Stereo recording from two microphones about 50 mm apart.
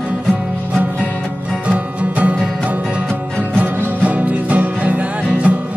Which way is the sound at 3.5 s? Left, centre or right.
Right.